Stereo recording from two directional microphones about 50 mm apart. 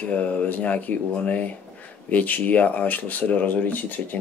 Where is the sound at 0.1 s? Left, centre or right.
Left.